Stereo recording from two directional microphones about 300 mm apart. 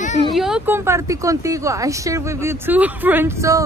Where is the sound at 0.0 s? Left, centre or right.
Left.